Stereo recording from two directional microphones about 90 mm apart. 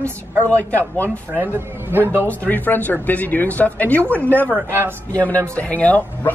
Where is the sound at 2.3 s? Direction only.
20° left (ahead or behind).